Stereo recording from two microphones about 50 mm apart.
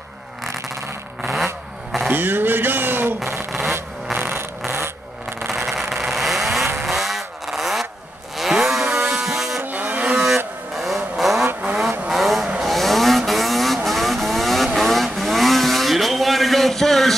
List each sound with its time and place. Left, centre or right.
1.3 s vehicle: centre
2.0 s speech: right
4.2 s a sound: right
5.7 s vehicle: centre
9.2 s a sound: centre
9.6 s vehicle: right
10.2 s vehicle: centre